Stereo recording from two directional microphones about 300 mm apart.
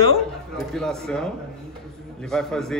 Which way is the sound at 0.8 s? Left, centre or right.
Centre.